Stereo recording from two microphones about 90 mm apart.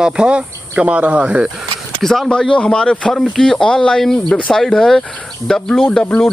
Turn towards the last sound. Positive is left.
turn(degrees=10)  # may be behind; listen again after turning